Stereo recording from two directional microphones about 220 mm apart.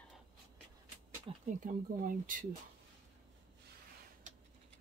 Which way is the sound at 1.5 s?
35° right (ahead or behind).